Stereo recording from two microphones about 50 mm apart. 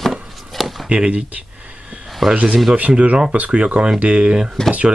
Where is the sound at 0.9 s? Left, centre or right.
Right.